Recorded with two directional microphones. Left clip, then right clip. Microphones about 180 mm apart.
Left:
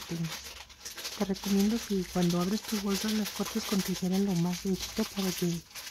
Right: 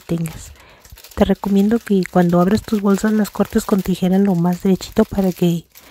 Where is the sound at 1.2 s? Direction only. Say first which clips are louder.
Right 15 dB; 45° right (ahead or behind).